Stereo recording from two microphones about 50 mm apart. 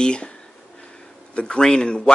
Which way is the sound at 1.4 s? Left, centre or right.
Centre.